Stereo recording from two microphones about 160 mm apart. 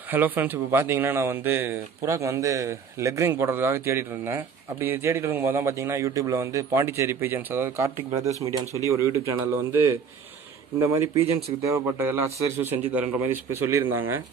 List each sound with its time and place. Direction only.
0.1 s a man's voice: 10° right (ahead or behind)